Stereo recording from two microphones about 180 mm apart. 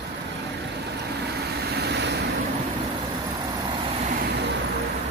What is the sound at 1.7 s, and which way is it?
Vehicle, 65° right (ahead or behind).